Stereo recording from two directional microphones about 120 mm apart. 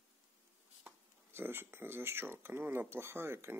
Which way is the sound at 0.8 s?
15° right (ahead or behind).